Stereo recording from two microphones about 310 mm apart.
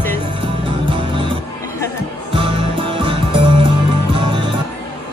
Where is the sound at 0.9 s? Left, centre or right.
Centre.